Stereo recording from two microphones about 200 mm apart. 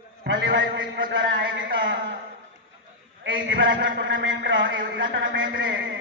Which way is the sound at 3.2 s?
75° right (ahead or behind).